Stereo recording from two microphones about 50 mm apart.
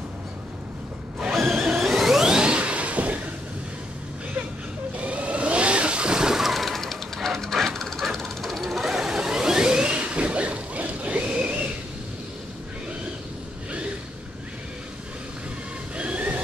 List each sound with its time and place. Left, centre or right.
1.3 s a sound: centre; by 3.2 s right
4.9 s vehicle: right
16.0 s train: right